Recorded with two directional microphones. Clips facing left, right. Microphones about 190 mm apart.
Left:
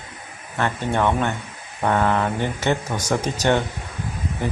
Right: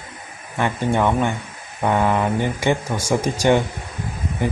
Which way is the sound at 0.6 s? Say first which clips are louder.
Right 2 dB; 10° right (ahead or behind).